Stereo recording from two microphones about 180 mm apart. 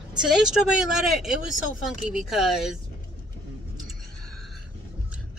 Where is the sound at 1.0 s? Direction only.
5° right (ahead or behind).